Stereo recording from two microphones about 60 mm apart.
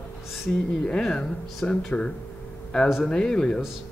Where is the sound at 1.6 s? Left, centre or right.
Centre.